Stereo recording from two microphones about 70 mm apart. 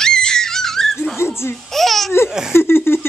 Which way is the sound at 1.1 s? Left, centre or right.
Left.